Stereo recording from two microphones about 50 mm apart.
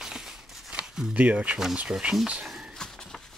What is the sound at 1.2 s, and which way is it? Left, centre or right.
Speech, right.